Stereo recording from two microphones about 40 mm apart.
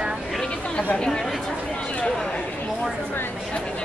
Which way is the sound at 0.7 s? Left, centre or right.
Left.